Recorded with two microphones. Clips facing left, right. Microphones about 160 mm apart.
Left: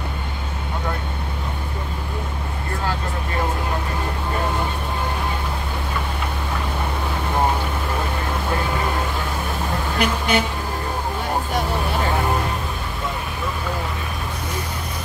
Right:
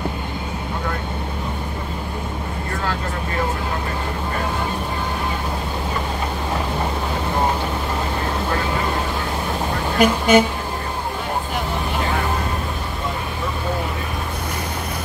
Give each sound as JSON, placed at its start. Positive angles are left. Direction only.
{"t": 9.9, "sound": "speech", "side_deg": -45}